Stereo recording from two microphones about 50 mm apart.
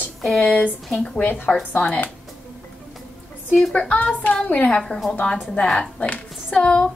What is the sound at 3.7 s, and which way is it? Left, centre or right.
Child singing, left.